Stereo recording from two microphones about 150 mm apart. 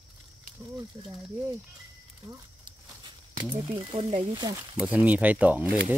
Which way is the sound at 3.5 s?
35° right (ahead or behind).